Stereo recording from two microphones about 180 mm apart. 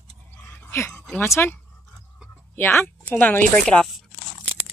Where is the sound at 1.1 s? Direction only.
15° left (ahead or behind).